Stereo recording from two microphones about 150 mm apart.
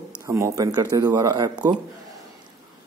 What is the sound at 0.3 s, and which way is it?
A man's voice, 20° right (ahead or behind).